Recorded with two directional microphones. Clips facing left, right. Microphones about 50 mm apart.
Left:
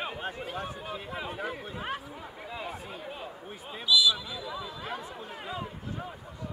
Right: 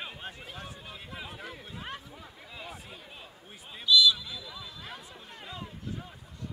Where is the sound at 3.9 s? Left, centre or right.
Centre.